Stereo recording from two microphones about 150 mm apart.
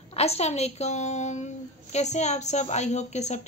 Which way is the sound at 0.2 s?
45° left (ahead or behind).